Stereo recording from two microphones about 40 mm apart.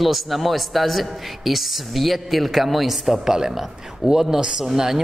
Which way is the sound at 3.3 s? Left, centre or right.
Centre.